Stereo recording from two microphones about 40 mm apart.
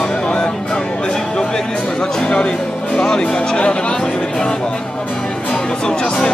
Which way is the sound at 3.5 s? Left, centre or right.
Left.